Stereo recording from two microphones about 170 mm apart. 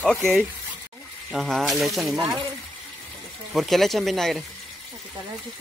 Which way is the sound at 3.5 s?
Centre (ahead or behind).